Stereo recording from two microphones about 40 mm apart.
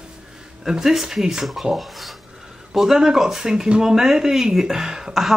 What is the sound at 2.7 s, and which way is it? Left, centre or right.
A woman's voice, centre.